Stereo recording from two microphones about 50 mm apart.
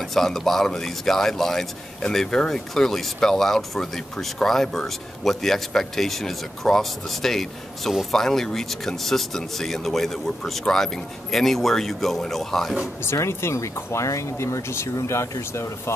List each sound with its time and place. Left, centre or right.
0.1 s a man's voice: centre
13.0 s speech: left